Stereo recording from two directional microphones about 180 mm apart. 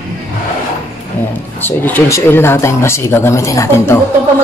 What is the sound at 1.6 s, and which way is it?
A man's voice, 10° left (ahead or behind).